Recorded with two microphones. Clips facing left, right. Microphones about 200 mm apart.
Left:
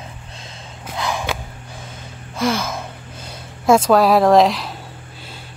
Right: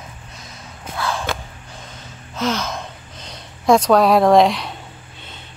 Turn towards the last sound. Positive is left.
turn(degrees=0)  # may be behind; listen again after turning